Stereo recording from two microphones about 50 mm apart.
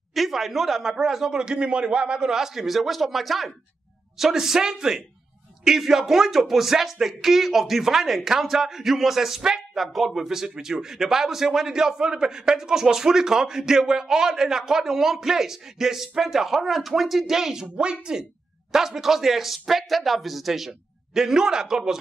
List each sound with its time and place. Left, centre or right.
0.1 s a man's voice: centre
17.7 s speech: centre
18.7 s speech: centre